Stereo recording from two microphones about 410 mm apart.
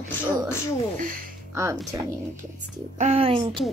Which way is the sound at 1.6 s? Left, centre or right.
Centre.